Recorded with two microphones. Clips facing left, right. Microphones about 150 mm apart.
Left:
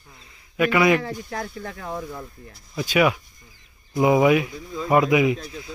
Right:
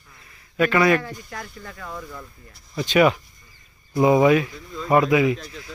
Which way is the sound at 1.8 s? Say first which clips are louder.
Left 3 dB; 30° left (ahead or behind).